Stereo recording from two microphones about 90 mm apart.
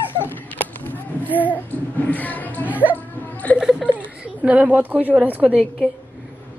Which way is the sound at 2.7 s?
15° right (ahead or behind).